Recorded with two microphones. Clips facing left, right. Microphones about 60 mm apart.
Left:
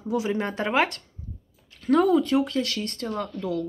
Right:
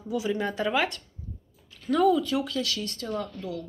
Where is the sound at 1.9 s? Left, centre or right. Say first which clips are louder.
Left 3 dB; left.